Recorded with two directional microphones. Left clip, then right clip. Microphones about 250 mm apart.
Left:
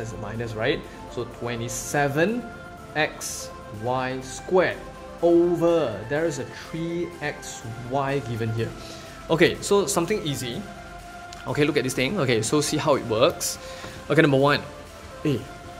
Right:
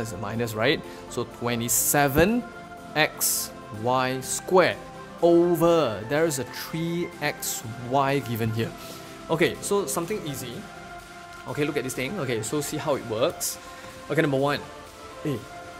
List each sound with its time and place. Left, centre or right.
0.0 s speech: right
9.3 s speech: centre